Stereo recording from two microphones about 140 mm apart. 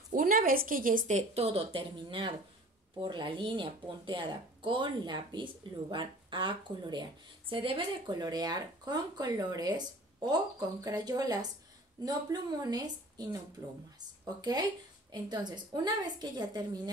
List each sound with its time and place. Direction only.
0.1 s a woman's voice: 90° right; by 16.9 s 30° right (ahead or behind)